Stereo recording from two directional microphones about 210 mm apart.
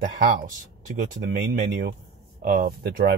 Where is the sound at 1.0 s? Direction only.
40° right (ahead or behind).